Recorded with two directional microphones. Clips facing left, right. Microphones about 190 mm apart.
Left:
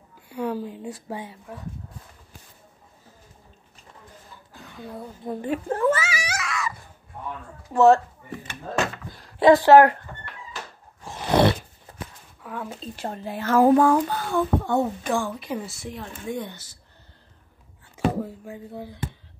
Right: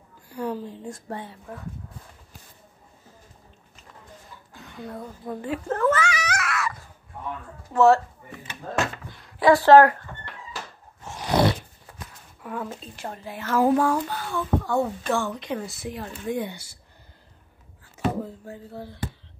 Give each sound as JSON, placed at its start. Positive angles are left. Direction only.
{"t": 0.3, "sound": "speech", "side_deg": 10}
{"t": 4.7, "sound": "speech", "side_deg": 5}
{"t": 5.2, "sound": "babbling", "side_deg": 20}
{"t": 7.7, "sound": "speech", "side_deg": 15}
{"t": 9.4, "sound": "a woman's voice", "side_deg": 20}
{"t": 12.4, "sound": "a sound", "side_deg": 0}
{"t": 12.9, "sound": "speech", "side_deg": 35}
{"t": 13.5, "sound": "a child's voice", "side_deg": 50}
{"t": 14.6, "sound": "speech", "side_deg": 20}
{"t": 17.9, "sound": "speech", "side_deg": 15}